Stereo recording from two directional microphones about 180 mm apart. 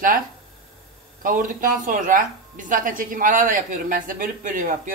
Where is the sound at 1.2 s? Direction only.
50° right (ahead or behind).